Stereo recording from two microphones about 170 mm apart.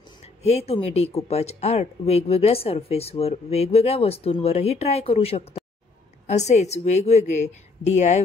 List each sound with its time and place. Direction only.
0.4 s speech: 40° left (ahead or behind)